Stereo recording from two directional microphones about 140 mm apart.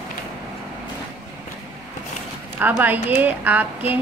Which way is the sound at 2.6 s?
15° right (ahead or behind).